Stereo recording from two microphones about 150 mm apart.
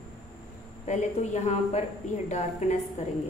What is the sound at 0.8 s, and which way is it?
A woman's voice, 50° left (ahead or behind).